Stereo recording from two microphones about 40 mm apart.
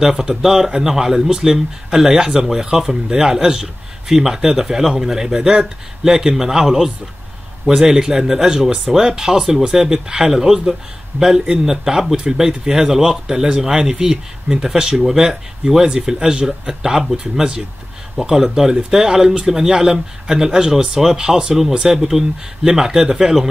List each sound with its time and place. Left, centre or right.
0.0 s speech: centre
15.8 s speech: centre
18.3 s speech: centre